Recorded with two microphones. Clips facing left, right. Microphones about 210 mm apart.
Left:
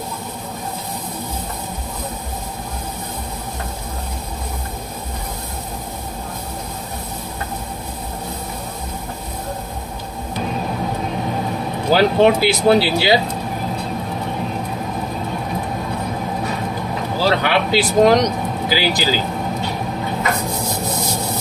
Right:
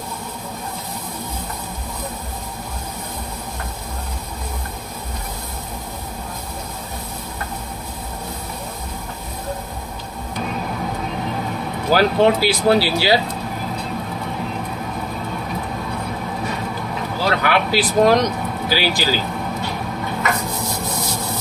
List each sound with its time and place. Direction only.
11.9 s speech: 20° left (ahead or behind)
17.3 s speech: 25° left (ahead or behind)